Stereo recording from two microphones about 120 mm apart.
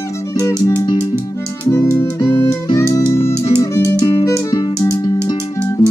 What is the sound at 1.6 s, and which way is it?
Music, 25° left (ahead or behind).